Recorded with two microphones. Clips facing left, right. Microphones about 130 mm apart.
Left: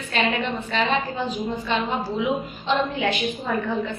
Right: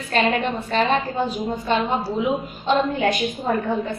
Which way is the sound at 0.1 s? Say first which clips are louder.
Right 3 dB; 40° right (ahead or behind).